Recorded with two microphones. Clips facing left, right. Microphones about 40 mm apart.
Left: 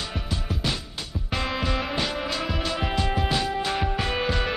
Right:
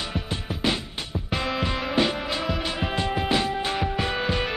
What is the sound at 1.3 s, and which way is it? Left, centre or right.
Music, centre.